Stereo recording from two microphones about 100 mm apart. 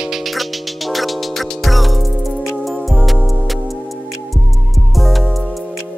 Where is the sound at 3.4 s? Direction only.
Centre (ahead or behind).